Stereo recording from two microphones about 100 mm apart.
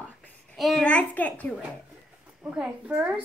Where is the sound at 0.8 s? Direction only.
15° left (ahead or behind).